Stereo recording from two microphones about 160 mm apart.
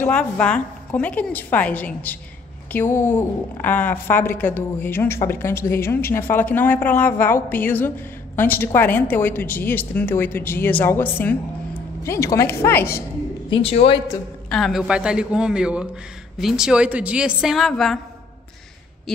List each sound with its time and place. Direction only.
0.0 s a woman's voice: 10° left (ahead or behind)
13.5 s a woman's voice: 40° left (ahead or behind)
14.5 s a woman's voice: centre (ahead or behind)
19.1 s a woman's voice: centre (ahead or behind)